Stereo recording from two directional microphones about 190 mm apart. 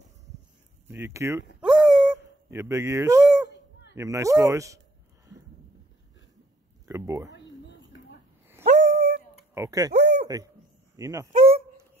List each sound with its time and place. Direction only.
0.8 s speech: 10° right (ahead or behind)
1.6 s dog: 5° right (ahead or behind)
2.5 s speech: 15° right (ahead or behind)
6.9 s speech: 15° right (ahead or behind)
8.6 s dog: 45° right (ahead or behind)
9.5 s speech: 15° right (ahead or behind)
9.9 s speech: 60° right (ahead or behind)
10.2 s a man's voice: 20° right (ahead or behind)
11.3 s dog: 50° right (ahead or behind)